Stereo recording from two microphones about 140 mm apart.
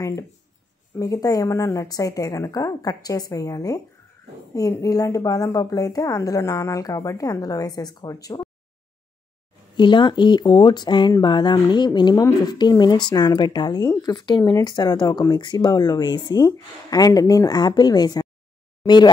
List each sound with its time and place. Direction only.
0.9 s speech: 25° left (ahead or behind)
9.8 s speech: 35° left (ahead or behind)